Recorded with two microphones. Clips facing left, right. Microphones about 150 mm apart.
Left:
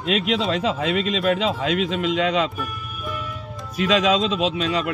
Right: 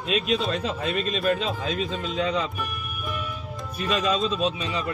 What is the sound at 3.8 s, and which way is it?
Speech, 90° left.